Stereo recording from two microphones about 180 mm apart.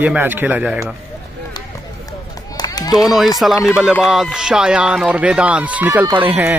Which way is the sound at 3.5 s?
15° left (ahead or behind).